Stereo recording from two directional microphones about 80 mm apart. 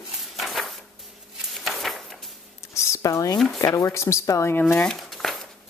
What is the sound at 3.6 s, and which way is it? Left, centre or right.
Speech, left.